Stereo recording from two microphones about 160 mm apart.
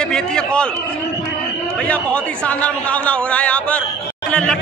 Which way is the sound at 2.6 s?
10° left (ahead or behind).